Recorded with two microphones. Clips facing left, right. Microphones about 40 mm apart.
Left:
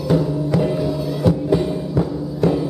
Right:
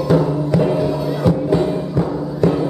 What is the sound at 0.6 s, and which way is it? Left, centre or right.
Music, centre.